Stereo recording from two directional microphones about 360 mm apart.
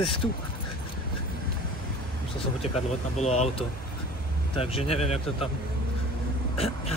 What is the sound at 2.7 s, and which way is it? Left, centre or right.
Speech, centre.